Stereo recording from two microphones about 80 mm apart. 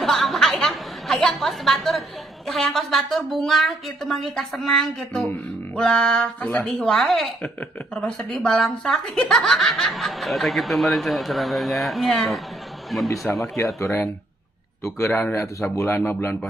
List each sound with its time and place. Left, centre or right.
0.0 s a sound: centre
5.8 s speech: centre
15.0 s speech: left